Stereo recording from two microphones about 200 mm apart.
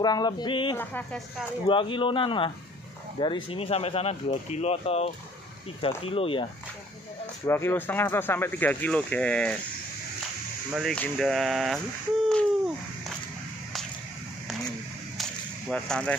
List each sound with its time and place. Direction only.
0.0 s speech: 20° left (ahead or behind)
0.7 s speech: 10° left (ahead or behind)
1.7 s speech: 25° left (ahead or behind)
7.4 s speech: 10° left (ahead or behind)
10.7 s speech: centre (ahead or behind)
12.3 s a sound: centre (ahead or behind)
15.7 s speech: 5° left (ahead or behind)